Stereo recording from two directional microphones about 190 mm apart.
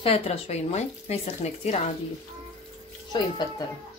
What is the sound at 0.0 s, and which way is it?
Speech, 30° left (ahead or behind).